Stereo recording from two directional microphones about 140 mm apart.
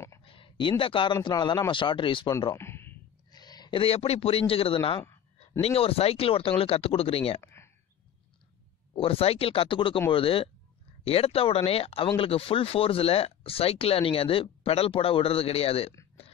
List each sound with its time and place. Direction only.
0.2 s a man's voice: 40° left (ahead or behind)
2.5 s a sound: 15° left (ahead or behind)
3.3 s speech: 30° left (ahead or behind)
8.9 s speech: 40° left (ahead or behind)